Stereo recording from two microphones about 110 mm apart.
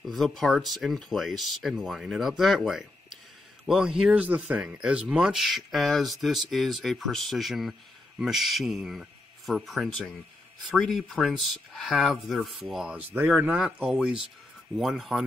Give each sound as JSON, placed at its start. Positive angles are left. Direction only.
{"t": 0.0, "sound": "speech", "side_deg": 0}